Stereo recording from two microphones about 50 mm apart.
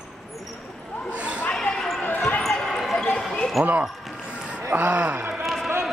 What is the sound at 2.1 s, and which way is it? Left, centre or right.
Basketball bounce, left.